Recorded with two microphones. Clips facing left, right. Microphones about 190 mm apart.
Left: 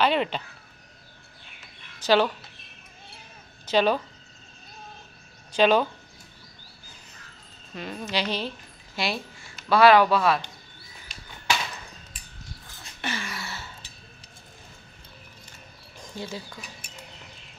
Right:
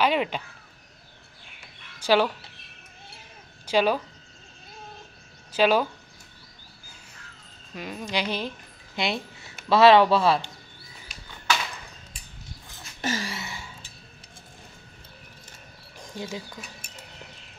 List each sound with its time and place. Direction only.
0.0 s speech: 10° right (ahead or behind)
2.0 s speech: 10° right (ahead or behind)
3.6 s speech: 10° right (ahead or behind)
5.5 s speech: 5° right (ahead or behind)
7.7 s a woman's voice: 10° right (ahead or behind); by 10.5 s 30° right (ahead or behind)
13.0 s a sound: 40° right (ahead or behind)
13.3 s a sound: 20° right (ahead or behind)
16.2 s speech: 15° right (ahead or behind)